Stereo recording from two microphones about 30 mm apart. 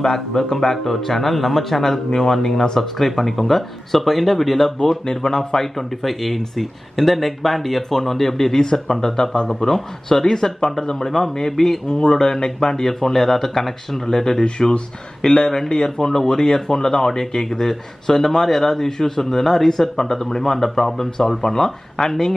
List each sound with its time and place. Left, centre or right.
0.0 s speech: centre
5.1 s speech: centre
9.5 s speech: centre
11.1 s speech: centre
12.1 s speech: left